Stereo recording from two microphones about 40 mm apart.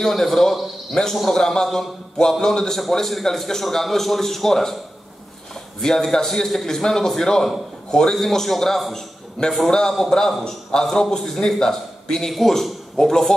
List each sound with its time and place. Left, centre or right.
0.0 s a man's voice: centre
12.3 s a man's voice: centre